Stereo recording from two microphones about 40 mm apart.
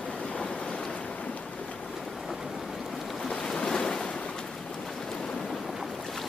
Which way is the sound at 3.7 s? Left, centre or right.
Centre.